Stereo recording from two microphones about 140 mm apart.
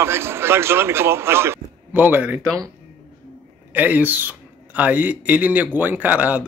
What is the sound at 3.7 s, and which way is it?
A man's voice, 10° right (ahead or behind).